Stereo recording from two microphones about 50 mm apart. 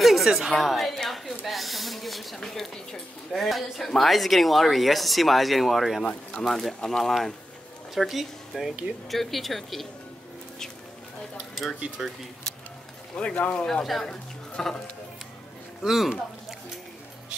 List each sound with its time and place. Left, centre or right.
0.0 s a sound: centre
2.4 s speech: centre
13.1 s speech: left
13.6 s speech: centre
15.8 s speech: centre